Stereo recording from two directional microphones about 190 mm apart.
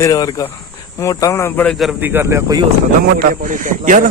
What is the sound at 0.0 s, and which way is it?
Speech, 20° left (ahead or behind).